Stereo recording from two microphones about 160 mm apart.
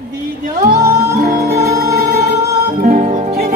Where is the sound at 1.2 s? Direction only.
70° right (ahead or behind).